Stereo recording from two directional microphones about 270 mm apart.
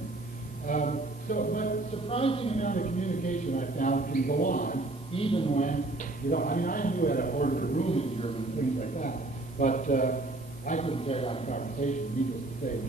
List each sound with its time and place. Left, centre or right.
0.7 s a man's voice: left